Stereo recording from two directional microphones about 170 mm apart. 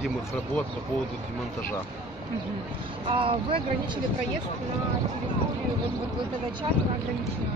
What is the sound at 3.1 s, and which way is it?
Speech, 30° right (ahead or behind).